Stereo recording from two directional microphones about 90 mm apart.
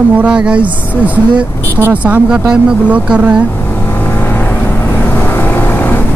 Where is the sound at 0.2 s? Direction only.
10° right (ahead or behind).